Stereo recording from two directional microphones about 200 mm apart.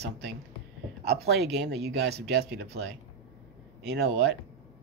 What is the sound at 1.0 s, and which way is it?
Speech, 55° right (ahead or behind).